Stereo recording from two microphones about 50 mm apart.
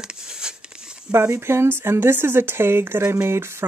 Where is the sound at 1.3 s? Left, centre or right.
Right.